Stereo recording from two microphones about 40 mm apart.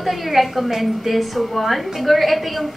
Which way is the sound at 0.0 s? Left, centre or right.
Centre.